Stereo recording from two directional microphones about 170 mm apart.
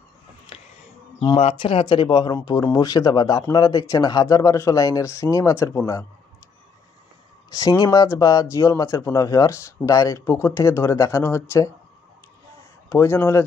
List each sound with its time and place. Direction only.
0.5 s a sound: 35° left (ahead or behind)
1.3 s speech: 35° left (ahead or behind); by 6.0 s 20° left (ahead or behind)
7.5 s speech: 20° left (ahead or behind)
12.9 s speech: 15° left (ahead or behind)